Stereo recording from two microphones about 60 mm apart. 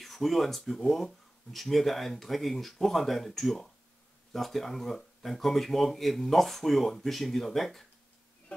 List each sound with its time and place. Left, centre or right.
0.0 s speech: centre